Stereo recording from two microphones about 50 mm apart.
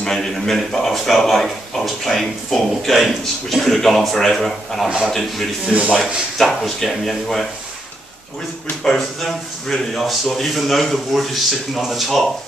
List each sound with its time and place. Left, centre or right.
0.0 s speech: centre
8.8 s speech: centre